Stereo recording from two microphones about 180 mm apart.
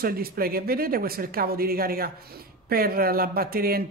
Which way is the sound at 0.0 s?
55° right (ahead or behind).